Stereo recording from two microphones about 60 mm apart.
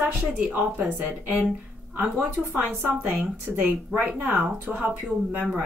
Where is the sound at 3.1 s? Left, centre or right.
Centre.